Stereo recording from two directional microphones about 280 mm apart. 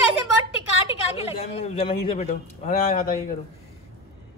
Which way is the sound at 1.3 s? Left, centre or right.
Left.